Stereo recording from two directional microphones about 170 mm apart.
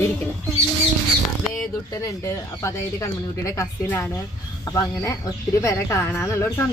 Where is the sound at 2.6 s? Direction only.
20° left (ahead or behind).